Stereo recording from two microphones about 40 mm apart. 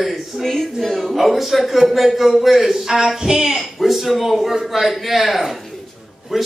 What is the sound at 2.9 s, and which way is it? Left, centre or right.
Speech, centre.